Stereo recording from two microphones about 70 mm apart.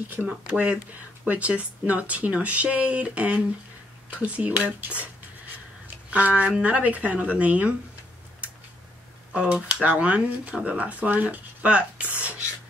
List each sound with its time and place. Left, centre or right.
0.3 s speech: centre
6.0 s speech: centre
9.3 s speech: centre